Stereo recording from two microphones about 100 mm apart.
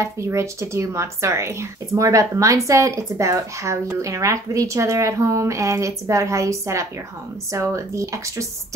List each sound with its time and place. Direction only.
0.0 s speech: 30° right (ahead or behind)